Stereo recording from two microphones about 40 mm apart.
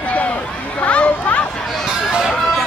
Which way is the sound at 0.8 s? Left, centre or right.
Left.